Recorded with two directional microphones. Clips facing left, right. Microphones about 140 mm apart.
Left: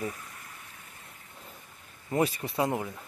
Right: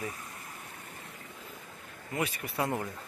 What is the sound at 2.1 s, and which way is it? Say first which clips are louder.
Speech: left 6 dB; 35° left (ahead or behind).